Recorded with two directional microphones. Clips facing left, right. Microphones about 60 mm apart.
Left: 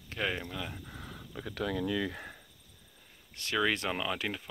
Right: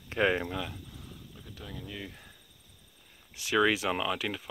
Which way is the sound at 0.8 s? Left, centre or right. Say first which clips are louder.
Left 3 dB; left.